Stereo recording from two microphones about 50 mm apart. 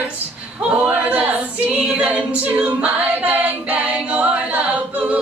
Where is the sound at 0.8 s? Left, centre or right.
Right.